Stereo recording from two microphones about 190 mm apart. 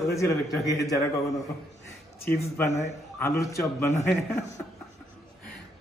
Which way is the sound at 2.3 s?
15° left (ahead or behind).